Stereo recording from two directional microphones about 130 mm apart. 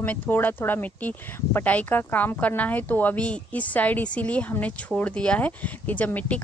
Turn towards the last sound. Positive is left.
turn(degrees=10)  # may be behind; listen again after turning